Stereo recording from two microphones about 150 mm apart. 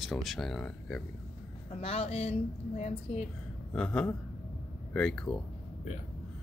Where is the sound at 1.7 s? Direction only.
40° left (ahead or behind).